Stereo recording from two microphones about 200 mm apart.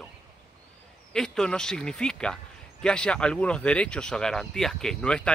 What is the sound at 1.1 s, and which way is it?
Speech, 5° left (ahead or behind).